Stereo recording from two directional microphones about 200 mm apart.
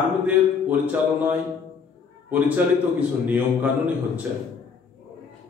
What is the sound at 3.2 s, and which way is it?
A man's voice, 10° right (ahead or behind).